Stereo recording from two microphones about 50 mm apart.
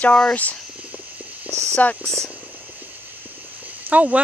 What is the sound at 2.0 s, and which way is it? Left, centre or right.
Speech, centre.